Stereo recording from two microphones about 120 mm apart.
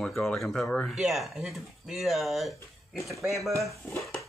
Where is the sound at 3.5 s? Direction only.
25° right (ahead or behind).